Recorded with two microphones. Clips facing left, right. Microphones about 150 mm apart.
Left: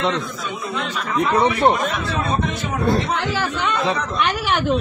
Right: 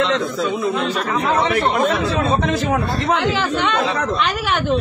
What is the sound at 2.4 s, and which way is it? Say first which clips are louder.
A man's voice: right 3 dB; 90° right.